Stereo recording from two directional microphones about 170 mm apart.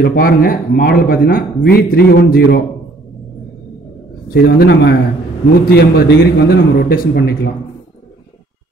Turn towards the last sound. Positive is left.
turn(degrees=70)  # may be behind; listen again after turning